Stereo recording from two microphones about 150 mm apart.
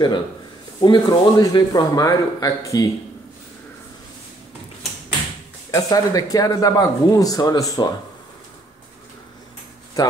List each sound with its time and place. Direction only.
0.7 s speech: 30° left (ahead or behind)
5.7 s speech: 25° left (ahead or behind)
10.0 s speech: 25° left (ahead or behind)